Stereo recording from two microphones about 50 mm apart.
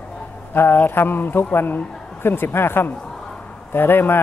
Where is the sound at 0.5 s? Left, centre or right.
Left.